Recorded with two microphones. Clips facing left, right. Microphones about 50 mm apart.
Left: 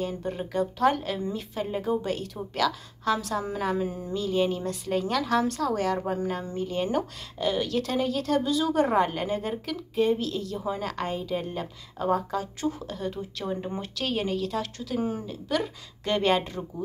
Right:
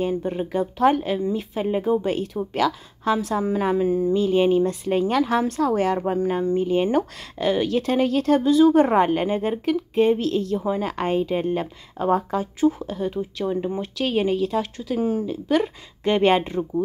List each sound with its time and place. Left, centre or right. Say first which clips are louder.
0.0 s a woman's voice: right 7 dB; right
6.9 s a woman's voice: right 6 dB; right
8.0 s a woman's voice: right 8 dB; right
10.6 s a woman's voice: right 6 dB; right
11.1 s a woman's voice: right 8 dB; right
12.5 s a woman's voice: right 9 dB; centre
13.4 s speech: right 7 dB; centre
14.8 s speech: right 6 dB; centre
15.4 s a woman's voice: right 5 dB; right